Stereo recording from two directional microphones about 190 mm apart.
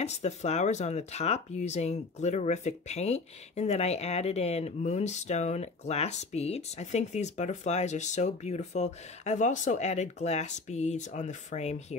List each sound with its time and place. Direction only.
0.0 s speech: 35° left (ahead or behind)